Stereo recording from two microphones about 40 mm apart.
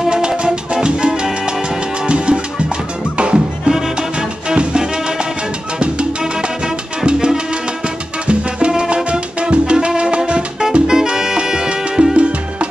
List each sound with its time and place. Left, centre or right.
0.1 s salsa music: right
2.0 s music: right
7.1 s music: right
10.7 s salsa music: centre